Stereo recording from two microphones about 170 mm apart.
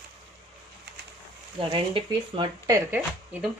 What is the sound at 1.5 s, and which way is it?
Speech, 30° right (ahead or behind).